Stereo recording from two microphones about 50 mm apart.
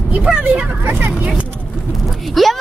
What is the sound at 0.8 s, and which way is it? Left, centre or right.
Speech, right.